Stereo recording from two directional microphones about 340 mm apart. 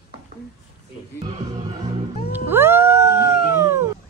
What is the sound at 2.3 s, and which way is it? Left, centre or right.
Howl, centre.